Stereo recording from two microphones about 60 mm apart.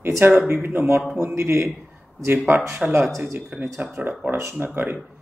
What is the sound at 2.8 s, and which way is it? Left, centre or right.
Speech, centre.